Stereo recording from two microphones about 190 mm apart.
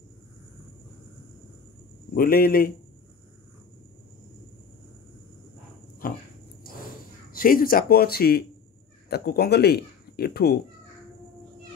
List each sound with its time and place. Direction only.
2.1 s speech: 50° left (ahead or behind)
6.0 s dog: 50° left (ahead or behind)
6.6 s a sound: 50° left (ahead or behind)
7.3 s speech: 50° left (ahead or behind)